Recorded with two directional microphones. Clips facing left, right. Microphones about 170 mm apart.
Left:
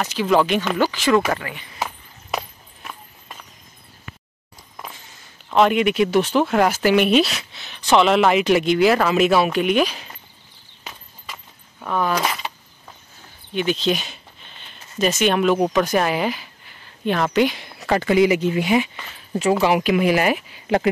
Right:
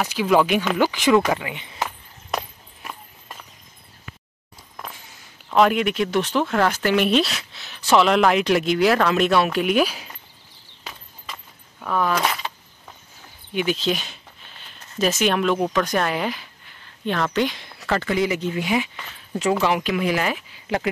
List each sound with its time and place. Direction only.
0.0 s speech: 10° right (ahead or behind)
1.8 s a sound: centre (ahead or behind)
5.5 s speech: centre (ahead or behind)
11.8 s speech: centre (ahead or behind)
13.5 s a sound: 5° right (ahead or behind)
15.6 s speech: 10° left (ahead or behind)
20.2 s speech: 55° left (ahead or behind)